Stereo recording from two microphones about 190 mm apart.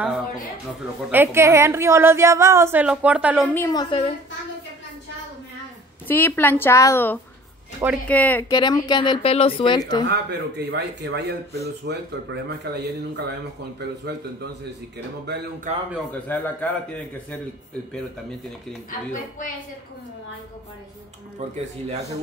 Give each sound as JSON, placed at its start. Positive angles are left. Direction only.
{"t": 1.1, "sound": "a woman's voice", "side_deg": -15}
{"t": 3.4, "sound": "a woman's voice", "side_deg": 15}
{"t": 6.0, "sound": "a woman's voice", "side_deg": 10}
{"t": 8.5, "sound": "a woman's voice", "side_deg": 20}
{"t": 10.0, "sound": "speech", "side_deg": -65}
{"t": 15.7, "sound": "a man's voice", "side_deg": -40}
{"t": 16.1, "sound": "a woman's voice", "side_deg": 10}
{"t": 18.9, "sound": "a woman's voice", "side_deg": 45}